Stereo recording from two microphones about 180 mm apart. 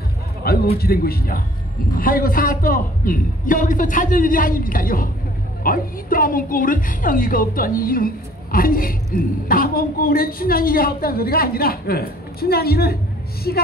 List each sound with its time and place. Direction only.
0.4 s music: 60° left (ahead or behind)
0.7 s speech: 55° left (ahead or behind)